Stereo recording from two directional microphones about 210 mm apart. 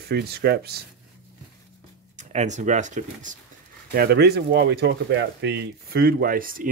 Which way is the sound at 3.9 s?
50° right (ahead or behind).